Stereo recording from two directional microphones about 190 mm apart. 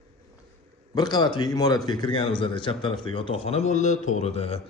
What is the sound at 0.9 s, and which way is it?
A man's voice, 20° left (ahead or behind).